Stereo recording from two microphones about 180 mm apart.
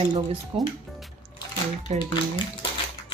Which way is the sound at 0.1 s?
25° right (ahead or behind).